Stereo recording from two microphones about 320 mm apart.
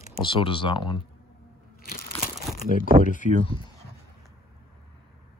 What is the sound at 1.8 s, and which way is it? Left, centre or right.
Crumpling, left.